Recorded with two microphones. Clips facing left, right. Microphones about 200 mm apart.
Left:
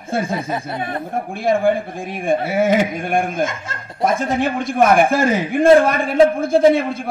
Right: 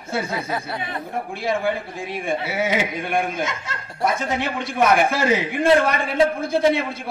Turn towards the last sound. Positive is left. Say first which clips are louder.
# left 6 dB
turn(degrees=50)  # may be behind; listen again after turning